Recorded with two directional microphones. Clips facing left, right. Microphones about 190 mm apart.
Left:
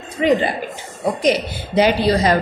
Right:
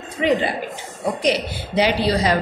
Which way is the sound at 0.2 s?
45° left (ahead or behind).